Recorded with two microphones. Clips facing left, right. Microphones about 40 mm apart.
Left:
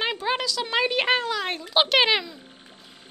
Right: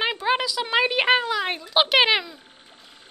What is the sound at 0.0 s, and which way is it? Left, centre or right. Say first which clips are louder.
A woman's voice: right 3 dB; centre.